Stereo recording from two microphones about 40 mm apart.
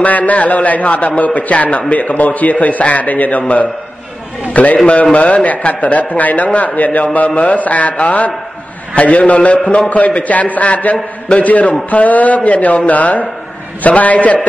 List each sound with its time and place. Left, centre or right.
0.2 s a man's voice: left